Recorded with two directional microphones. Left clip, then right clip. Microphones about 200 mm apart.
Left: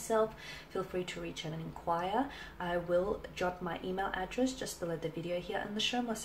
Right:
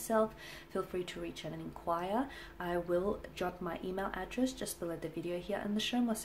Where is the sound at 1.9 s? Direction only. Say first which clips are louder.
Left 2 dB; 40° right (ahead or behind).